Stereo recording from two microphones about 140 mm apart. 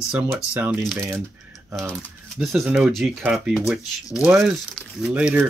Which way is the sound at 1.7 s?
5° left (ahead or behind).